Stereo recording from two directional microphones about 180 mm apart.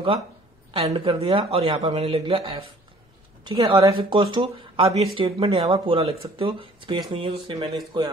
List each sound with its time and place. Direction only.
0.8 s speech: 30° right (ahead or behind)